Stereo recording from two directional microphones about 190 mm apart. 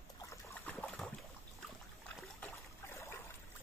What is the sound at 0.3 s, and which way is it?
Trickle, 5° left (ahead or behind).